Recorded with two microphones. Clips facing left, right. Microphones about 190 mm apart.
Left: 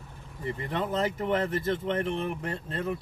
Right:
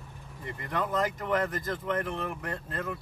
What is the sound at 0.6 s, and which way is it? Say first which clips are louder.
Speech: even; 30° left (ahead or behind).